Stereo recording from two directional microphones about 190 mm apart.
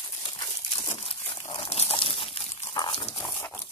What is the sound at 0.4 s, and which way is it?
Crumpling, 25° left (ahead or behind).